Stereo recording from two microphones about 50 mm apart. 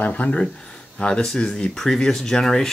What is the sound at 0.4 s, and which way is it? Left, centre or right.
Speech, centre.